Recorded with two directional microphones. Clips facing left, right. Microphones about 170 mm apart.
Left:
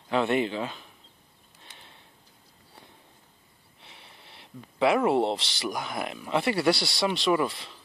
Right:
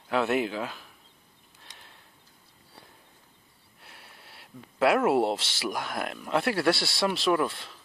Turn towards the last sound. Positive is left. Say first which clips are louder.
# left 1 dB
turn(degrees=0)  # may be behind; listen again after turning